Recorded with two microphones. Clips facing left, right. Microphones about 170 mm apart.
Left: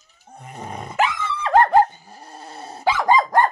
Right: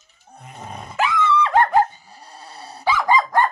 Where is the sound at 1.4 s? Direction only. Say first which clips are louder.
Left 5 dB; 40° left (ahead or behind).